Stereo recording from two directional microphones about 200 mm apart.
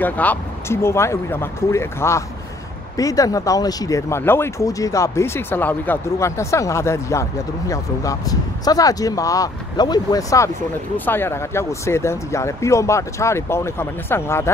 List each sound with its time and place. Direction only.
0.0 s speech: 10° left (ahead or behind)